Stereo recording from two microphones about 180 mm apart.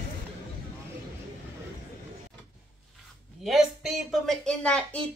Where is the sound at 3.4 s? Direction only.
Centre (ahead or behind).